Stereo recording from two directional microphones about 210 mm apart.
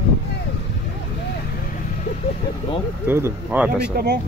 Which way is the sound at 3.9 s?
50° right (ahead or behind).